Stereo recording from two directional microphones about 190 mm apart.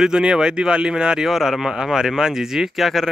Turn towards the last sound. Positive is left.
turn(degrees=0)  # may be behind; listen again after turning